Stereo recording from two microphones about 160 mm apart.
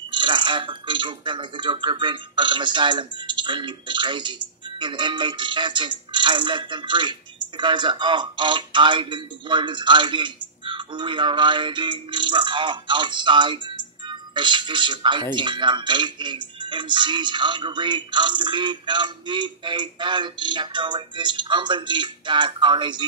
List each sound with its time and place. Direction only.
0.1 s speech: 30° right (ahead or behind)